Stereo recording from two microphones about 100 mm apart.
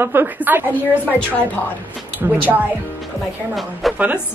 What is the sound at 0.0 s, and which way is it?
Speech, 20° right (ahead or behind).